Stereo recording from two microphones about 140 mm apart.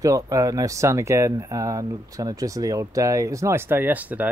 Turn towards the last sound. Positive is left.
turn(degrees=-10)  # may be behind; listen again after turning